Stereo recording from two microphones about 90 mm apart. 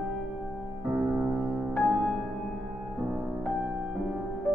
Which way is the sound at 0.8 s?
15° right (ahead or behind).